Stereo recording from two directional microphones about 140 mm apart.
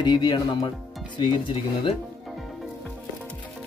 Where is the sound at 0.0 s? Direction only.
30° left (ahead or behind).